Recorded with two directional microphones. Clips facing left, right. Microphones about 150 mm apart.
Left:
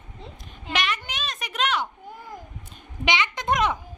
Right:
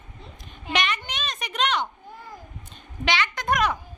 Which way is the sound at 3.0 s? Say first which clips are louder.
Even; 20° left (ahead or behind).